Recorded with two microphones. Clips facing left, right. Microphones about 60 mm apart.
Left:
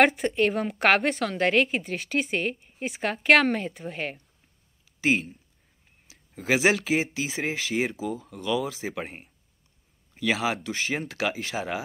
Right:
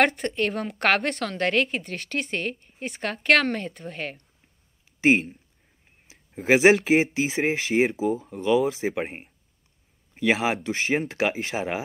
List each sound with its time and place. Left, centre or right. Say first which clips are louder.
0.0 s a woman's voice: left 2 dB; centre
6.0 s a sound: right 5 dB; right
6.6 s speech: right 6 dB; right
10.1 s speech: right 3 dB; right